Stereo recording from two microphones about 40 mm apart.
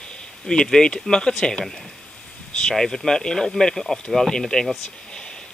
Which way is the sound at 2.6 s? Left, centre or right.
Centre.